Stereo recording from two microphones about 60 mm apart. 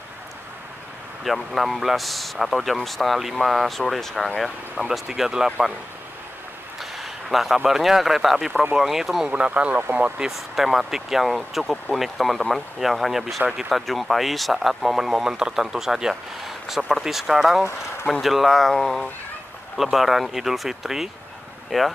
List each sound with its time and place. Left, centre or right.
1.2 s speech: centre
6.8 s speech: centre
9.3 s speech: right
10.3 s speech: centre